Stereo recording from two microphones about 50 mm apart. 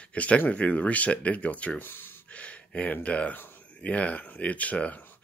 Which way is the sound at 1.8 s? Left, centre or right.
Left.